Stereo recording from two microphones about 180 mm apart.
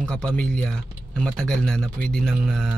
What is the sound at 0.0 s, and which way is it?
Speech, 5° left (ahead or behind).